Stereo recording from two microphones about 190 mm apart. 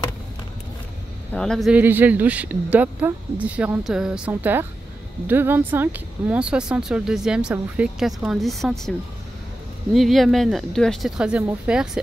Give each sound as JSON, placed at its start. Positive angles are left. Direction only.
{"t": 1.3, "sound": "speech", "side_deg": 5}
{"t": 9.9, "sound": "speech", "side_deg": 0}